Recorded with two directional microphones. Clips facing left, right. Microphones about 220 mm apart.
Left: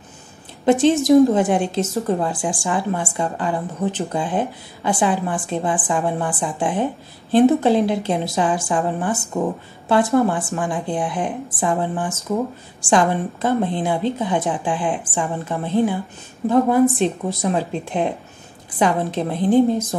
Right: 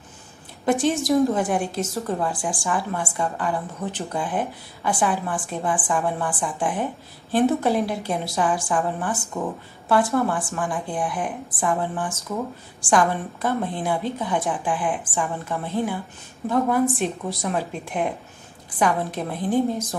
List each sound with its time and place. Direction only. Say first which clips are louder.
0.7 s a woman's voice: left 6 dB; 25° left (ahead or behind)